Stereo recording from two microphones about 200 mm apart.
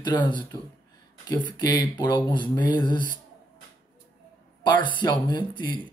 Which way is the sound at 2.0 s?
20° left (ahead or behind).